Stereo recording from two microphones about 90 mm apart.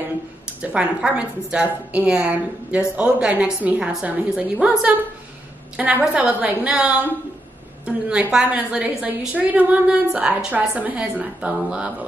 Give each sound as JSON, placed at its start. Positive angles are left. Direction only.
{"t": 0.6, "sound": "a woman's voice", "side_deg": -15}